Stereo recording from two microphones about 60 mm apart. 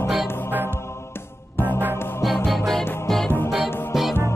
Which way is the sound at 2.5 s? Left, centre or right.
Centre.